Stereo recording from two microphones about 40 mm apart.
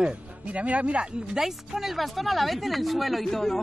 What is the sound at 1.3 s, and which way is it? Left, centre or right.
Speech, centre.